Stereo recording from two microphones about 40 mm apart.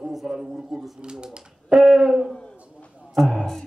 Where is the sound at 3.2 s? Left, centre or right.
Centre.